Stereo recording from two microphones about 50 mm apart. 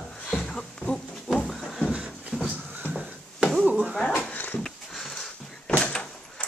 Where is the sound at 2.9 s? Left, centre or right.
Centre.